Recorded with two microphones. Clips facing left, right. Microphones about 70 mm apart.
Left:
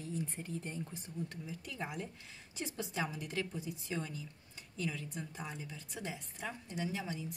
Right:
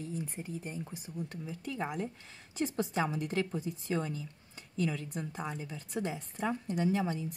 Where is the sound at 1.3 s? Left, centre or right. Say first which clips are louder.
Right 6 dB; right.